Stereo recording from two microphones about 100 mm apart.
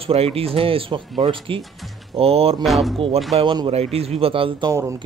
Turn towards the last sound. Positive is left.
turn(degrees=-30)  # may be behind; listen again after turning